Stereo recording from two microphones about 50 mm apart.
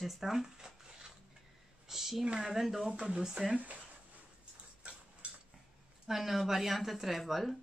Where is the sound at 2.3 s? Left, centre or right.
Centre.